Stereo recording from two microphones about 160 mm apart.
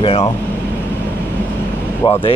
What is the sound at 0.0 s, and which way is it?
Speech, 35° left (ahead or behind).